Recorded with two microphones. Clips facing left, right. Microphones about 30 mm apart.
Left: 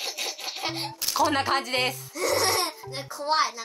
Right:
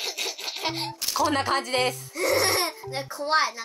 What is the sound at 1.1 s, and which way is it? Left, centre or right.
Speech, centre.